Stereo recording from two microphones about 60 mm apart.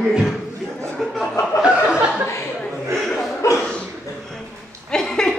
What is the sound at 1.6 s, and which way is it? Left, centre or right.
Chuckle, centre.